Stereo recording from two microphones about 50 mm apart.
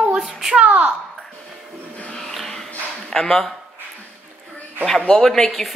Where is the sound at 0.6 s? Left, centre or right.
Right.